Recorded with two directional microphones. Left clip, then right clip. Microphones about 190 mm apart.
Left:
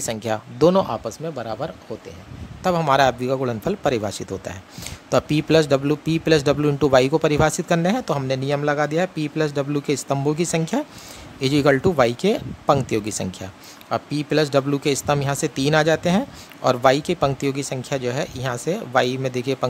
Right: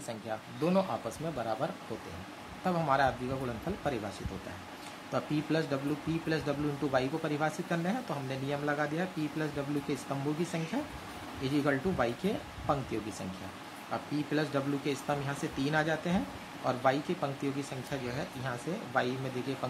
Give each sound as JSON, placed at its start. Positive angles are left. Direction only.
{"t": 0.1, "sound": "speech", "side_deg": 50}